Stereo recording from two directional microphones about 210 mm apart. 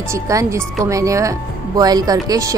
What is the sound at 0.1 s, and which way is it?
Speech, 15° right (ahead or behind).